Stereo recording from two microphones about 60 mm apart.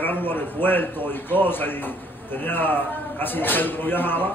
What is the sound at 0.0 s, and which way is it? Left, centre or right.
A man's voice, left.